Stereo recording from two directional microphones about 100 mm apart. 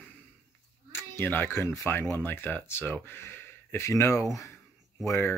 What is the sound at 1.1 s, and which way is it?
Speech, 20° left (ahead or behind).